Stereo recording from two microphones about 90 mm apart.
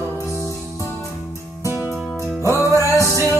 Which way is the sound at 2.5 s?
35° left (ahead or behind).